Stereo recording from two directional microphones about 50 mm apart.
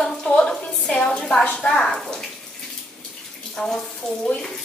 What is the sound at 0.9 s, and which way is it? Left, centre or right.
Speech, left.